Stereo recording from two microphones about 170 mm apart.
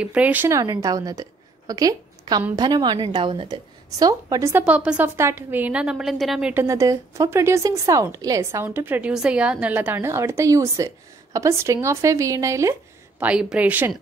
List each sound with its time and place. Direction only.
0.0 s a woman's voice: 5° right (ahead or behind)
6.5 s speech: 15° right (ahead or behind)
13.2 s speech: 5° right (ahead or behind)